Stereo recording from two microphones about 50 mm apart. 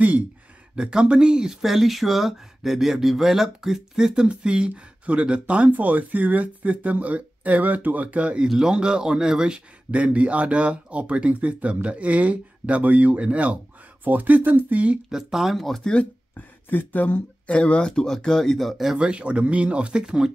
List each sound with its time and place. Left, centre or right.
0.7 s speech: centre
8.5 s speech: centre; by 15.0 s right
15.3 s speech: centre
16.3 s speech: left; by 18.9 s centre
18.9 s speech: right